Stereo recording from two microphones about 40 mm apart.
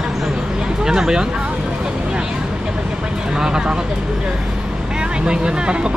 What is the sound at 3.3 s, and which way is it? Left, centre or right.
Speech, centre.